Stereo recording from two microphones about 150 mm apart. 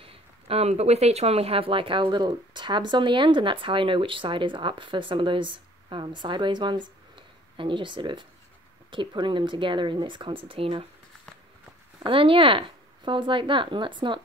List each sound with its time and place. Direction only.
0.0 s speech: 40° right (ahead or behind)
12.1 s speech: 35° right (ahead or behind)